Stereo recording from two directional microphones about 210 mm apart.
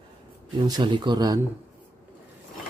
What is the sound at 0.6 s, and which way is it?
Speech, 20° right (ahead or behind).